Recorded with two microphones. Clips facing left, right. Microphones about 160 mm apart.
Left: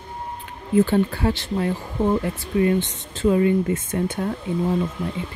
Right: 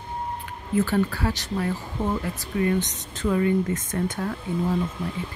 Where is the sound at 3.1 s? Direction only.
25° left (ahead or behind).